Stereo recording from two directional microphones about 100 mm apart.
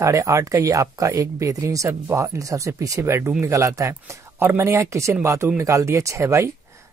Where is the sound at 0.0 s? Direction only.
35° right (ahead or behind).